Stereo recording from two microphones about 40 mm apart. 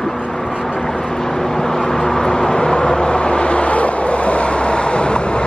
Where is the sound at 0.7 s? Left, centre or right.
Centre.